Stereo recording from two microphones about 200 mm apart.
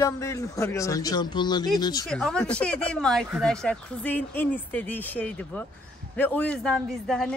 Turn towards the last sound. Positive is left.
turn(degrees=0)  # may be behind; listen again after turning